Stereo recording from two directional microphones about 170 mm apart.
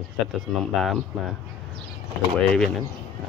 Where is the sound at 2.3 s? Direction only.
5° left (ahead or behind).